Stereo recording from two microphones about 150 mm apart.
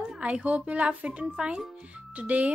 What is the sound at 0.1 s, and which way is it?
A woman's voice, 10° right (ahead or behind).